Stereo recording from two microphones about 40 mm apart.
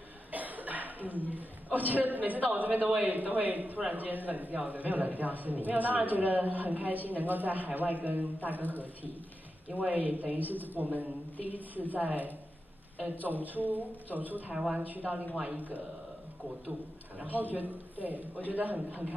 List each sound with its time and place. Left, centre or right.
0.3 s a man's voice: right
14.5 s speech: centre
14.8 s a man's voice: right
17.3 s a man's voice: right